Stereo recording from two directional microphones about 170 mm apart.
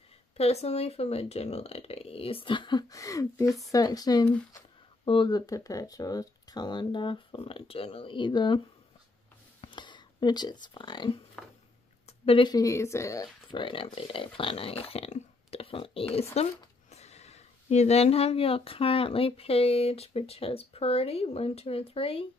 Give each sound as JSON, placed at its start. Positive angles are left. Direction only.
{"t": 0.4, "sound": "speech", "side_deg": 40}
{"t": 3.4, "sound": "speech", "side_deg": 0}
{"t": 3.7, "sound": "speech", "side_deg": 20}
{"t": 9.6, "sound": "speech", "side_deg": 25}
{"t": 11.4, "sound": "a sound", "side_deg": 5}
{"t": 12.1, "sound": "speech", "side_deg": 30}